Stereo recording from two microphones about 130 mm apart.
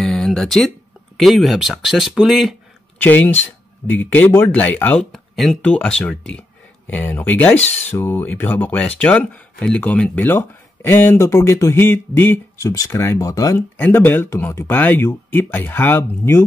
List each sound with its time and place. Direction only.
0.0 s a sound: 5° left (ahead or behind)
1.1 s speech: centre (ahead or behind)
3.0 s speech: 15° left (ahead or behind)
5.1 s speech: centre (ahead or behind); by 16.4 s 15° left (ahead or behind)